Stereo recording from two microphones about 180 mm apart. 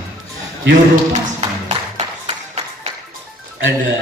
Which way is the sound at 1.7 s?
35° right (ahead or behind).